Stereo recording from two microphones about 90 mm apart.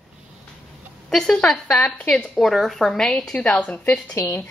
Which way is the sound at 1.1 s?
5° left (ahead or behind).